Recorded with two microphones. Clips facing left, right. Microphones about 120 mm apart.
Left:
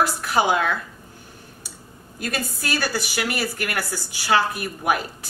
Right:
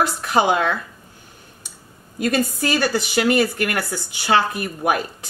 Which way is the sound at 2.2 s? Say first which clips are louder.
Right 8 dB; 20° right (ahead or behind).